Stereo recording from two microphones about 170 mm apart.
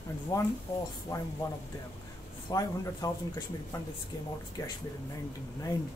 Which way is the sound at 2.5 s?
20° left (ahead or behind).